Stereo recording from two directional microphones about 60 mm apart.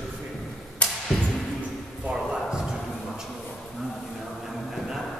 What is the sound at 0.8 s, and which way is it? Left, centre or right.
Music, left.